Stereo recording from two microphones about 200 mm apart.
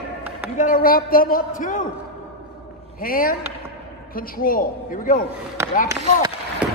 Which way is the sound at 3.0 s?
45° left (ahead or behind).